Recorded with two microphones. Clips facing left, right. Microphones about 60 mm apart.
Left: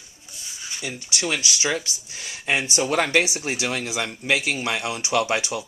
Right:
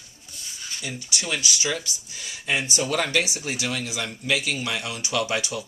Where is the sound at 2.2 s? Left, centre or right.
Left.